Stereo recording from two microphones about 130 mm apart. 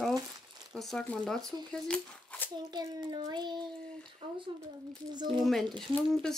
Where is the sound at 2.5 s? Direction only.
35° right (ahead or behind).